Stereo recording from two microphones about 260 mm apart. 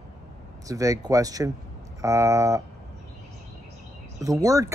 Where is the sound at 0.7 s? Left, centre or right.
Centre.